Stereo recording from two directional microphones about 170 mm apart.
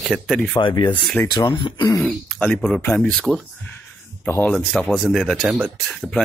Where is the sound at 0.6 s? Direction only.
30° left (ahead or behind).